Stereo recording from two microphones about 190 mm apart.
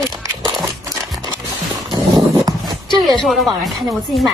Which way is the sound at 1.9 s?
20° right (ahead or behind).